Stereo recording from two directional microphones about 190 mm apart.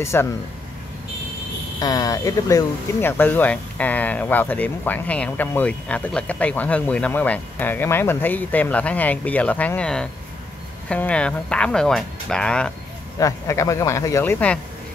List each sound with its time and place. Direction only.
0.0 s speech: 15° left (ahead or behind)
1.8 s speech: 20° left (ahead or behind)
13.2 s speech: 15° left (ahead or behind)